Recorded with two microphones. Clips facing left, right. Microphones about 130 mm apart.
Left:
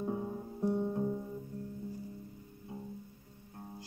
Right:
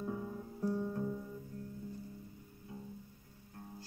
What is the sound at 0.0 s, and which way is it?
Music, 30° left (ahead or behind).